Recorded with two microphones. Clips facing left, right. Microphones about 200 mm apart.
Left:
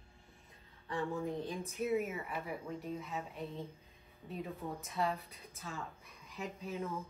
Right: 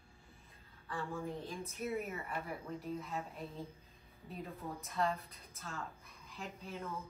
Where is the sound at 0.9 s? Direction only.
20° left (ahead or behind).